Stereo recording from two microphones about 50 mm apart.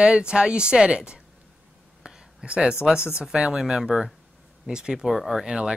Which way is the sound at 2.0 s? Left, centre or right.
Centre.